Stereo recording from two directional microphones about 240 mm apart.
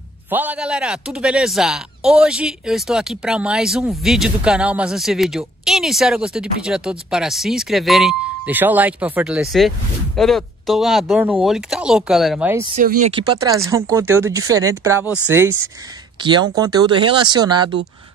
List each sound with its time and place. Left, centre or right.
0.3 s speech: centre
13.0 s speech: centre